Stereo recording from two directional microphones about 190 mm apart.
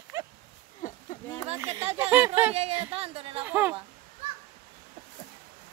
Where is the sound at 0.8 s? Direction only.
45° left (ahead or behind).